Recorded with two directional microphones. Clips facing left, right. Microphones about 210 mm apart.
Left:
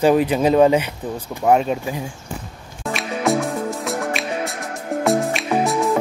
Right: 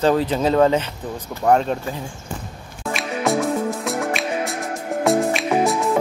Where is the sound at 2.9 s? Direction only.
Centre (ahead or behind).